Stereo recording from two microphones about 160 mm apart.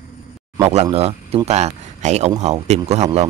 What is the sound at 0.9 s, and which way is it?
Speech, 40° right (ahead or behind).